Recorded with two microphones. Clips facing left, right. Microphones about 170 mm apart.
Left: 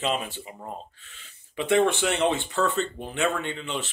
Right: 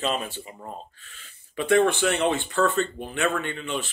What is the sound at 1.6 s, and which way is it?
Speech, 20° left (ahead or behind).